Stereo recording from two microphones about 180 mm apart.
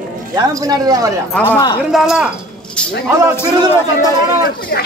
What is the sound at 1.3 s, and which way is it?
Speech, 10° left (ahead or behind).